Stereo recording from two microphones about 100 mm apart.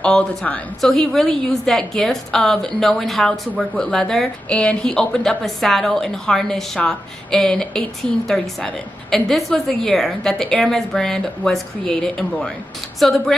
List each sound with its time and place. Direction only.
0.0 s a woman's voice: 10° left (ahead or behind)